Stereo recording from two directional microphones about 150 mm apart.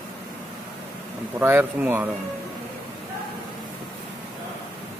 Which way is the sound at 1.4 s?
15° right (ahead or behind).